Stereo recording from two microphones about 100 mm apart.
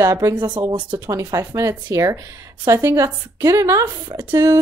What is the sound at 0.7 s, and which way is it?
Speech, 50° right (ahead or behind).